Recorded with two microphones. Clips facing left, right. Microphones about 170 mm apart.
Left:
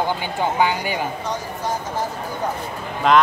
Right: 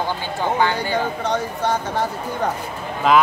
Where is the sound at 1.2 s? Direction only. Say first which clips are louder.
Right 4 dB; 65° right (ahead or behind).